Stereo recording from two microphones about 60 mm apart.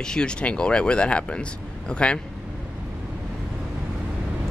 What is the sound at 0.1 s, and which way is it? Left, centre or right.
Speech, centre.